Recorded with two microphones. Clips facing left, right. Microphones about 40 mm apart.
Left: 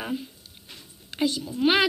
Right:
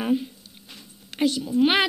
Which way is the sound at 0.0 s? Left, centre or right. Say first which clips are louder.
Right 7 dB; centre.